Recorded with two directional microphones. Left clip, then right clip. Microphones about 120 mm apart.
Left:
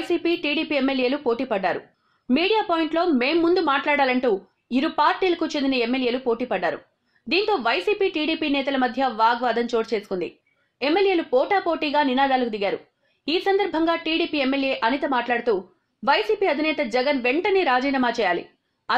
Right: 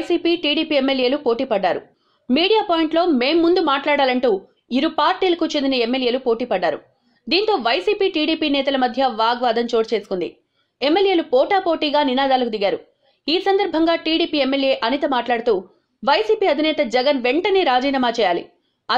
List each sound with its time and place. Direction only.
0.0 s a woman's voice: 15° right (ahead or behind)